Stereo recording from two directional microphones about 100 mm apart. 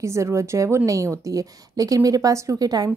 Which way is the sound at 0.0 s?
30° right (ahead or behind).